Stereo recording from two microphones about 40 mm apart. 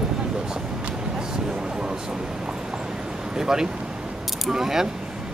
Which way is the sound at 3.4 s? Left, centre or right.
Centre.